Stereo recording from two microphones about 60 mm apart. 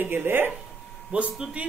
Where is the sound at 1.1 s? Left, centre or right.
Centre.